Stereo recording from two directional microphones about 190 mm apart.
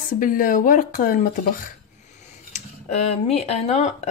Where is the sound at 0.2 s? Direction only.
45° left (ahead or behind).